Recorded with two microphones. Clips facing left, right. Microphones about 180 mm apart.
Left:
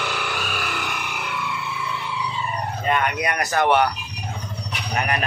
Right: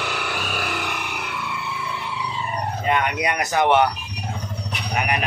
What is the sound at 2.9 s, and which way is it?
Speech, 20° right (ahead or behind).